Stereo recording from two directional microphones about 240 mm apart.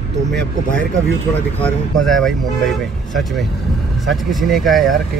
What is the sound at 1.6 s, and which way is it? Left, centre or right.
Speech, centre.